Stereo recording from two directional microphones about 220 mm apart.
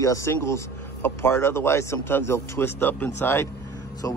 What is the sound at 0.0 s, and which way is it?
Speech, 15° left (ahead or behind).